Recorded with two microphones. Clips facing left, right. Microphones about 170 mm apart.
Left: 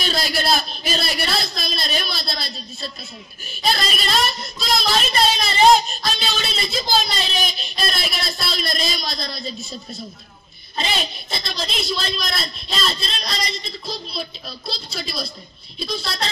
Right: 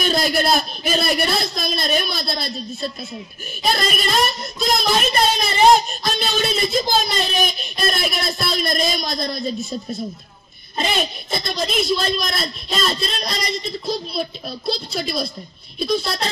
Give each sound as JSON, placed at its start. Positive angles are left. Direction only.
{"t": 0.0, "sound": "speech", "side_deg": -50}
{"t": 6.0, "sound": "music", "side_deg": -50}
{"t": 7.2, "sound": "speech", "side_deg": -50}